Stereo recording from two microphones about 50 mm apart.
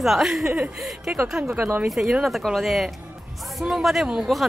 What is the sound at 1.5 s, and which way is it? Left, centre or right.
Speech, right.